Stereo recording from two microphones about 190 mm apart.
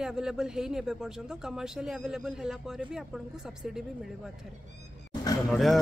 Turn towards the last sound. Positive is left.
turn(degrees=0)  # may be behind; listen again after turning